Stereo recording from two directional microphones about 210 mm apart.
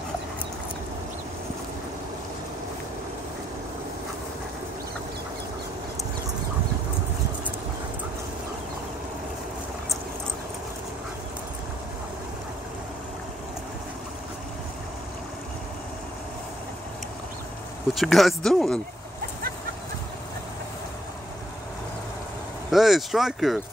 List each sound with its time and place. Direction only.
17.9 s speech: centre (ahead or behind)
22.7 s speech: centre (ahead or behind)